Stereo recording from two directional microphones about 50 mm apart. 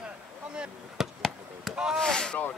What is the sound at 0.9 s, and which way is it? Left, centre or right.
Chop, centre.